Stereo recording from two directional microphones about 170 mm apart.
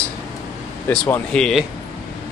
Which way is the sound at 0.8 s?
5° left (ahead or behind).